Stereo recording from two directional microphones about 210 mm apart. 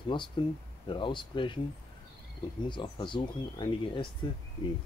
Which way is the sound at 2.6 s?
20° left (ahead or behind).